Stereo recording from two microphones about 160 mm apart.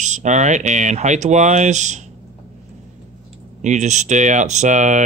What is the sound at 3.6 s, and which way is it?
Speech, 50° right (ahead or behind).